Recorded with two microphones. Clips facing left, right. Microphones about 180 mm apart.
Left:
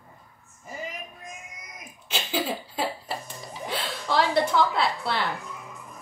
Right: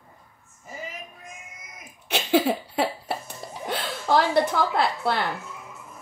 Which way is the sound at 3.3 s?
60° right (ahead or behind).